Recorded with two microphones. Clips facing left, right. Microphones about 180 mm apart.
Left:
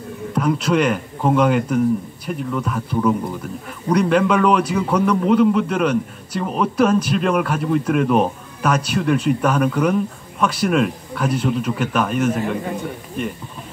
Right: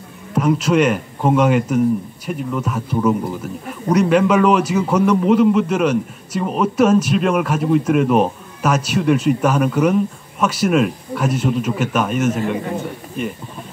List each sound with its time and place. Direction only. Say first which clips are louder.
0.3 s a man's voice: right 2 dB; 5° right (ahead or behind)